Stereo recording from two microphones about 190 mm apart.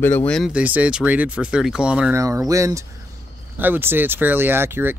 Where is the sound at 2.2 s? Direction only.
15° right (ahead or behind).